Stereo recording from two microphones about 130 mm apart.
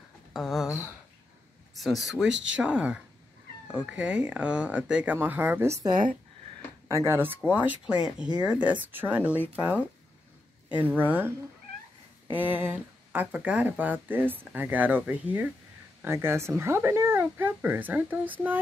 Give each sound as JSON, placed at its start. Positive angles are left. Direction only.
{"t": 0.3, "sound": "speech", "side_deg": 0}
{"t": 1.8, "sound": "speech", "side_deg": 0}
{"t": 7.4, "sound": "speech", "side_deg": -10}
{"t": 11.0, "sound": "speech", "side_deg": -15}